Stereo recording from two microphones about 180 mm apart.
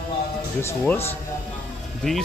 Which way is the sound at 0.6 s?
15° left (ahead or behind).